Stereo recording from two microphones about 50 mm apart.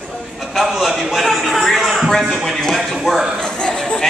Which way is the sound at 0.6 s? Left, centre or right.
Centre.